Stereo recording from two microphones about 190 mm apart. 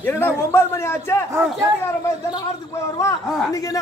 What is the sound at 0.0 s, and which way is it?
A man's voice, 15° left (ahead or behind).